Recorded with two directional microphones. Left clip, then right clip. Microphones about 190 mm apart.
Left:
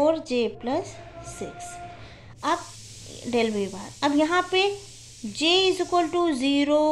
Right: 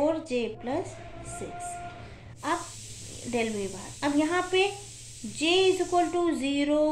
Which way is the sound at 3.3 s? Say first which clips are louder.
Left 5 dB; 45° left (ahead or behind).